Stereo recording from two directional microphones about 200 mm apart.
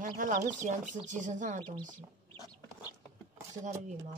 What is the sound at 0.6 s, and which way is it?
Speech, 40° right (ahead or behind).